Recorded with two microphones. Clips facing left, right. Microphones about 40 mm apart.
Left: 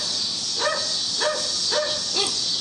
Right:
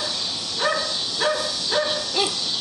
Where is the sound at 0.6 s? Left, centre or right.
Centre.